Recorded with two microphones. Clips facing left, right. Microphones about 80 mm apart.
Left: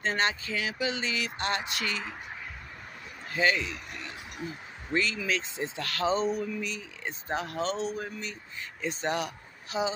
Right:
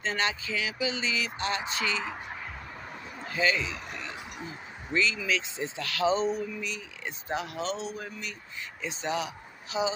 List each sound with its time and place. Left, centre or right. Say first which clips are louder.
0.0 s speech: left 1 dB; left
3.3 s a man's voice: left 1 dB; left
3.7 s speech: right 2 dB; right
4.9 s speech: right 1 dB; left
8.8 s speech: left 1 dB; left